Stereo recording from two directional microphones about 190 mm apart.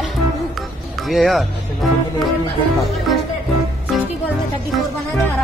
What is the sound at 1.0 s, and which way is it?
Speech, centre (ahead or behind).